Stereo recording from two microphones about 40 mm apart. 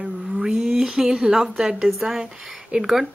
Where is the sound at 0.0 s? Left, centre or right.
Centre.